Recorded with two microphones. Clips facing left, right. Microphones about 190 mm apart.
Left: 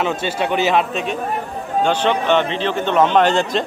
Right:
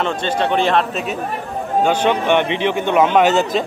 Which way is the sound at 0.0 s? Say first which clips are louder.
Right 1 dB; 5° left (ahead or behind).